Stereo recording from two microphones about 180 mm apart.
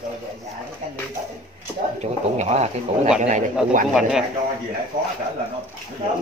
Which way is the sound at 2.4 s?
40° right (ahead or behind).